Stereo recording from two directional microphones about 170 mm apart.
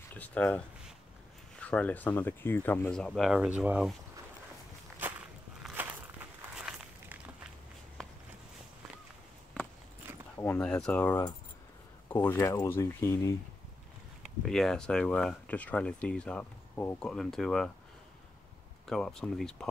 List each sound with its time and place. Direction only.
0.1 s speech: 10° left (ahead or behind)
1.6 s speech: 5° left (ahead or behind)
5.0 s walk: 10° right (ahead or behind)
8.0 s a sound: centre (ahead or behind)
10.3 s speech: 10° left (ahead or behind)
14.2 s speech: centre (ahead or behind)
18.9 s speech: centre (ahead or behind)